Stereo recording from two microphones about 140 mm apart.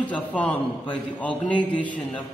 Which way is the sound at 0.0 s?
10° left (ahead or behind).